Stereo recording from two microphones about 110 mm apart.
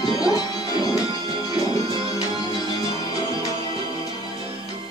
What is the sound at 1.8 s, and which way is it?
Music, 50° right (ahead or behind).